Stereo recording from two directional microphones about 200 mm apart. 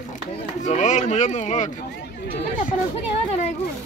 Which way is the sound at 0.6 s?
35° left (ahead or behind).